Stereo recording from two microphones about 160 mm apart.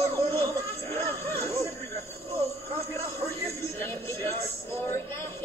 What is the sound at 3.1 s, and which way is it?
Television, 15° left (ahead or behind).